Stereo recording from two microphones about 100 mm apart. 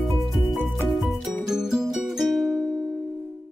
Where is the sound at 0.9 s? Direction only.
Centre (ahead or behind).